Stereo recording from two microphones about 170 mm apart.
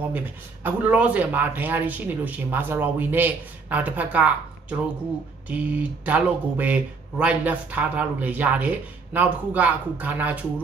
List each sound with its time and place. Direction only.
0.7 s speech: 10° right (ahead or behind)